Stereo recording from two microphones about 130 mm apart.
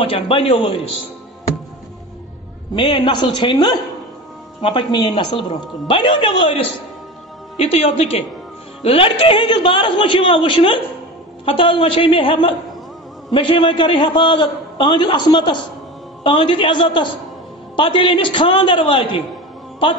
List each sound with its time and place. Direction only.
0.0 s a woman's voice: 40° left (ahead or behind)
2.7 s a man's voice: 40° left (ahead or behind)
7.5 s a man's voice: 55° left (ahead or behind)